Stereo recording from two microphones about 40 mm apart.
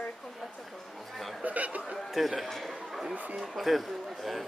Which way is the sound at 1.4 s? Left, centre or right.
Right.